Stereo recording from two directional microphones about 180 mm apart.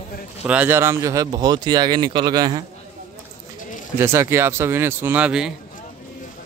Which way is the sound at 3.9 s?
15° right (ahead or behind).